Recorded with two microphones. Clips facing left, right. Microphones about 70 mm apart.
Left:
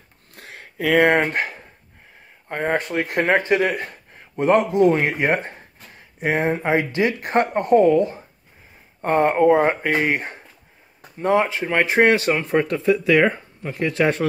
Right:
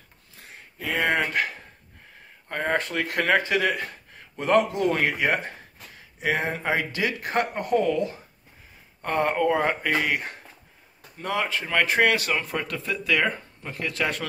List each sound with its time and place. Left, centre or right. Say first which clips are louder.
0.3 s a sound: left 6 dB; left
1.0 s speech: left 3 dB; left
1.3 s speech: left 2 dB; left
2.4 s a man's voice: left 3 dB; centre